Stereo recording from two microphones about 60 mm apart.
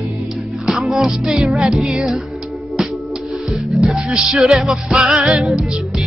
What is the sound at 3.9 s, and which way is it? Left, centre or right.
Music, centre.